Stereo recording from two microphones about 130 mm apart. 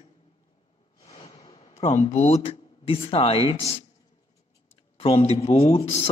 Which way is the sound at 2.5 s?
45° left (ahead or behind).